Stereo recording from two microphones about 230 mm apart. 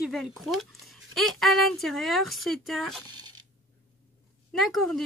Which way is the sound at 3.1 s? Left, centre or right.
Centre.